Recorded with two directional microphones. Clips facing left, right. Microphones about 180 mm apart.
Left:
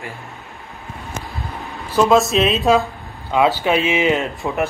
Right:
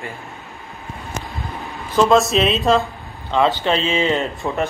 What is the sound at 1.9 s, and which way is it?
Speech, 5° left (ahead or behind).